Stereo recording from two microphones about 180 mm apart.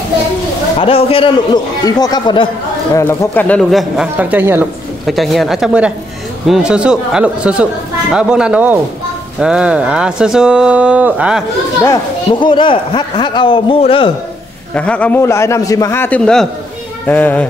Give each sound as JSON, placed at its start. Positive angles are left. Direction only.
{"t": 0.7, "sound": "a man's voice", "side_deg": 30}
{"t": 3.0, "sound": "speech", "side_deg": 15}
{"t": 5.0, "sound": "speech", "side_deg": 0}
{"t": 12.3, "sound": "a man's voice", "side_deg": 25}
{"t": 14.7, "sound": "a man's voice", "side_deg": 5}